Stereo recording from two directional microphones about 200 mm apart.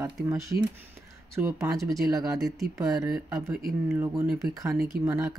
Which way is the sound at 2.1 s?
15° right (ahead or behind).